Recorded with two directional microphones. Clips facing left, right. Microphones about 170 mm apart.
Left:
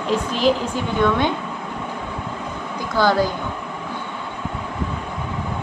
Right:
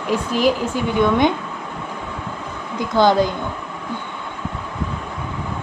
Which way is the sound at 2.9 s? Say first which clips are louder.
Right 3 dB; 20° right (ahead or behind).